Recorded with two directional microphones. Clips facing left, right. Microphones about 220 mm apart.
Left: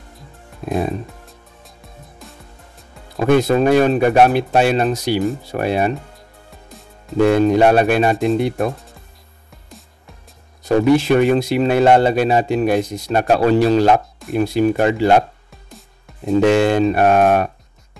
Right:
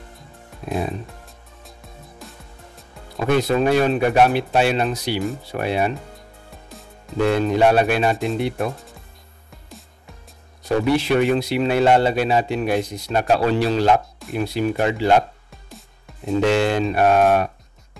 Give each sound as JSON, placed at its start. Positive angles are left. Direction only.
{"t": 0.7, "sound": "speech", "side_deg": 45}
{"t": 3.2, "sound": "speech", "side_deg": 45}
{"t": 7.2, "sound": "speech", "side_deg": 50}
{"t": 10.9, "sound": "speech", "side_deg": 45}
{"t": 16.1, "sound": "music", "side_deg": 0}
{"t": 16.4, "sound": "speech", "side_deg": 50}